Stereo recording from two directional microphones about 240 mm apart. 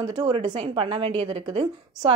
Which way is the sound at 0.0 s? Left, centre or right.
Centre.